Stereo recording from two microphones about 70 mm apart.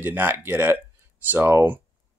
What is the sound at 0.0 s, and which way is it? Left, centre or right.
Speech, right.